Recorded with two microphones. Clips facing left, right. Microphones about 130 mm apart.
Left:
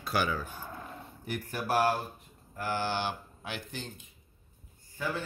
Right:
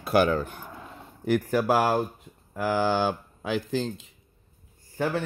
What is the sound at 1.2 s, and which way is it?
Speech, 90° right.